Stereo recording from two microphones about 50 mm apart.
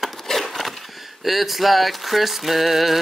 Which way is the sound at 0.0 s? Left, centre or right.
Centre.